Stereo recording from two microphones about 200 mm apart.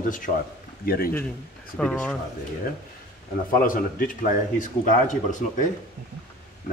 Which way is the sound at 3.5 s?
45° left (ahead or behind).